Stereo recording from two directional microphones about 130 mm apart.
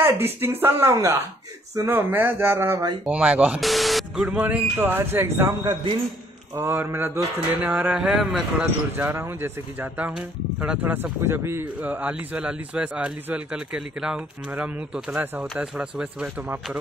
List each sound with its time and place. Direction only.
0.0 s a man's voice: 20° right (ahead or behind)
8.9 s a man's voice: 15° right (ahead or behind)